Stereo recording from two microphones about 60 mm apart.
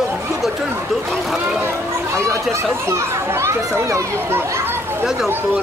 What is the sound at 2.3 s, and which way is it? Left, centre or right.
Speech, right.